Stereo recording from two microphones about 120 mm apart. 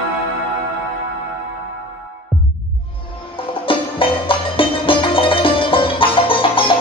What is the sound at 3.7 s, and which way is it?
Music, 45° left (ahead or behind).